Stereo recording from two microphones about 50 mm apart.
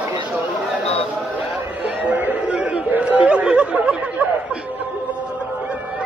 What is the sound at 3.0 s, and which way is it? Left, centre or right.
Chatter, right.